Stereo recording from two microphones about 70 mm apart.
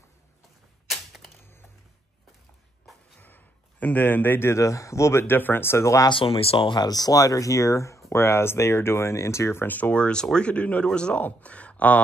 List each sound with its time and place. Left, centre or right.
0.8 s typewriter: centre
3.2 s speech: left
5.2 s speech: left
6.7 s speech: left
9.7 s speech: left